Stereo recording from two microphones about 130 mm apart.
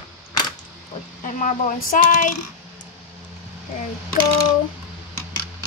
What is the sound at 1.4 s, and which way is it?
Speech, 80° left.